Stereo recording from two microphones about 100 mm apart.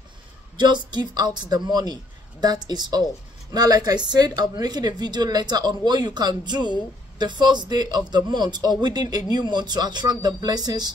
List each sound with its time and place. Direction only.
0.6 s speech: 50° right (ahead or behind)